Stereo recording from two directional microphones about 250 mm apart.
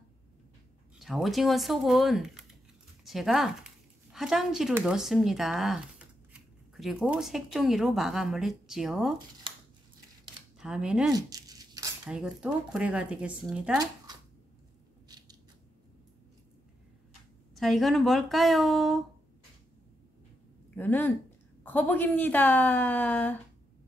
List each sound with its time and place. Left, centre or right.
0.9 s speech: centre
9.5 s a sound: centre
10.6 s speech: centre
11.1 s a sound: centre
12.1 s speech: centre
15.0 s scissors: centre
17.6 s speech: centre
20.7 s a woman's voice: centre